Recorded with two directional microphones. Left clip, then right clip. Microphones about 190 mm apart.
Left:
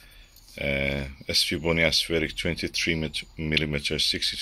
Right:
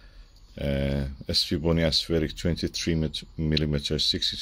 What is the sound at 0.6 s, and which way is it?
Speech, 20° right (ahead or behind).